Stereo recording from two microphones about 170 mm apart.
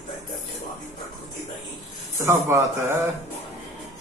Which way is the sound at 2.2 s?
15° right (ahead or behind).